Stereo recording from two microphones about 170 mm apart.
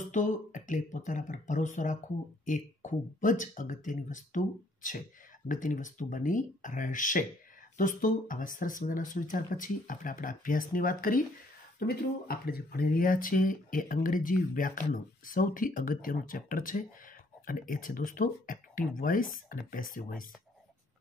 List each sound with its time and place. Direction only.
0.1 s speech: 50° left (ahead or behind)